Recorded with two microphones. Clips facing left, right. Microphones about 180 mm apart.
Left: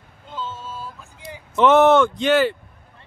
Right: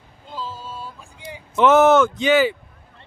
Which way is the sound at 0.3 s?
35° right (ahead or behind).